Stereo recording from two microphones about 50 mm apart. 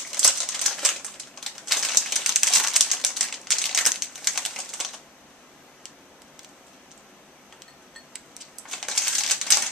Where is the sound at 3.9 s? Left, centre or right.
Centre.